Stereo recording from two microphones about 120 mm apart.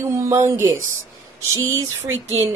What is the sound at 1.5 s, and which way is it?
Speech, 25° right (ahead or behind).